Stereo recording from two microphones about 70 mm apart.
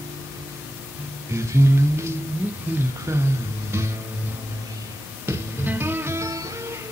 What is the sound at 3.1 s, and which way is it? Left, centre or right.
Music, right.